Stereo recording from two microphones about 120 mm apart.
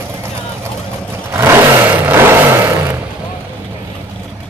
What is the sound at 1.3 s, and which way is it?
Vehicle, 20° right (ahead or behind).